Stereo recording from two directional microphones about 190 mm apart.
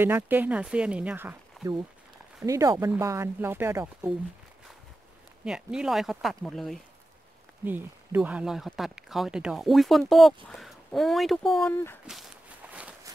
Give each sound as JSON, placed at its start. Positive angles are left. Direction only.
{"t": 0.0, "sound": "speech", "side_deg": -10}
{"t": 5.4, "sound": "speech", "side_deg": -5}
{"t": 7.6, "sound": "speech", "side_deg": -10}
{"t": 11.7, "sound": "speech", "side_deg": 10}
{"t": 12.1, "sound": "walk", "side_deg": -5}